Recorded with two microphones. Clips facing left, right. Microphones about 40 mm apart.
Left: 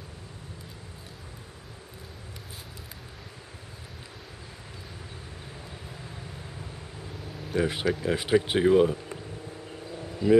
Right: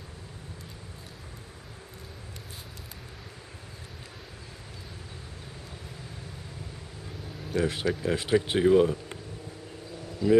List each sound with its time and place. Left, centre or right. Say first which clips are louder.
7.4 s speech: left 1 dB; centre
10.2 s speech: left 2 dB; centre